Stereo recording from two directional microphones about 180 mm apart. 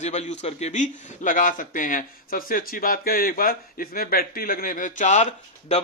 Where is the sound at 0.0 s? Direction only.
40° left (ahead or behind).